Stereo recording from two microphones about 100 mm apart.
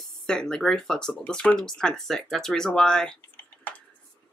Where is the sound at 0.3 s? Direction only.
5° left (ahead or behind).